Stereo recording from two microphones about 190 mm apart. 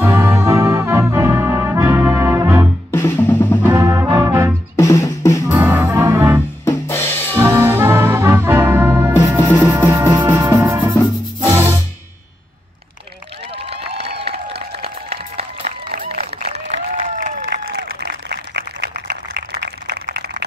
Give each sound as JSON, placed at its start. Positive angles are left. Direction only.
{"t": 0.0, "sound": "brass instrument", "side_deg": -15}
{"t": 2.9, "sound": "drum", "side_deg": 10}
{"t": 3.7, "sound": "music", "side_deg": -20}
{"t": 4.7, "sound": "music", "side_deg": 15}
{"t": 5.5, "sound": "music", "side_deg": -10}
{"t": 6.6, "sound": "drum kit", "side_deg": 15}
{"t": 7.3, "sound": "brass instrument", "side_deg": -10}
{"t": 9.7, "sound": "music", "side_deg": -10}
{"t": 13.7, "sound": "a sound", "side_deg": -30}
{"t": 15.8, "sound": "a sound", "side_deg": -50}
{"t": 16.3, "sound": "applause", "side_deg": -35}
{"t": 17.5, "sound": "applause", "side_deg": -60}
{"t": 18.9, "sound": "a sound", "side_deg": -55}